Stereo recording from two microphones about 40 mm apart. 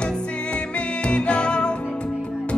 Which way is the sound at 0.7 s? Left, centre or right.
Left.